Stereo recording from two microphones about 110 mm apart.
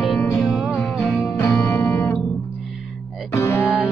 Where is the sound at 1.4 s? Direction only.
25° left (ahead or behind).